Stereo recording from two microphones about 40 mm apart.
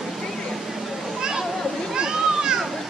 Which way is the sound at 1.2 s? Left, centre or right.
Centre.